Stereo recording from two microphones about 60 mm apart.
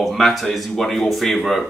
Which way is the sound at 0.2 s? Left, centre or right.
Centre.